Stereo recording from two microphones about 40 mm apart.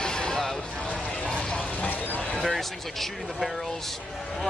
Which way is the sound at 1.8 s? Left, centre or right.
Left.